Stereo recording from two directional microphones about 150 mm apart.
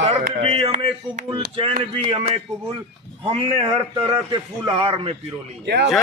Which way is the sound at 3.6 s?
35° right (ahead or behind).